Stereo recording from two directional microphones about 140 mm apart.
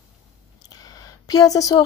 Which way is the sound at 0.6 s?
25° left (ahead or behind).